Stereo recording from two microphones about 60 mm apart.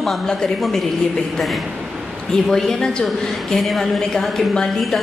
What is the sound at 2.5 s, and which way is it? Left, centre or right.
A woman's voice, centre.